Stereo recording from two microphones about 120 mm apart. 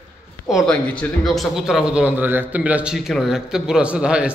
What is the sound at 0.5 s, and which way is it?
A man's voice, centre (ahead or behind).